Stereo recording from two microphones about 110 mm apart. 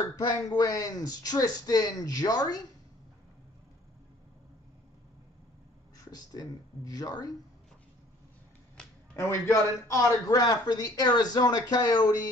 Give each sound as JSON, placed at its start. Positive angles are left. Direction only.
{"t": 0.1, "sound": "a man's voice", "side_deg": 35}
{"t": 6.1, "sound": "a man's voice", "side_deg": 35}
{"t": 9.1, "sound": "a man's voice", "side_deg": 25}